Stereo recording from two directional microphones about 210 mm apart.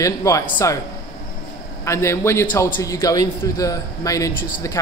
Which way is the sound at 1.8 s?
15° left (ahead or behind).